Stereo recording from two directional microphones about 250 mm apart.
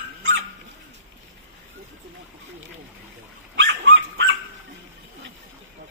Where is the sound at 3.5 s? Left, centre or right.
Right.